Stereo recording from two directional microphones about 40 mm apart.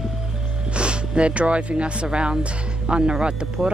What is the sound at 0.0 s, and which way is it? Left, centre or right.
Music, centre.